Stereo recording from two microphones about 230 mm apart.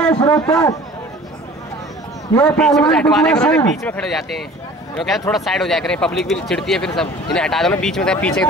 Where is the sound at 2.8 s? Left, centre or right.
Centre.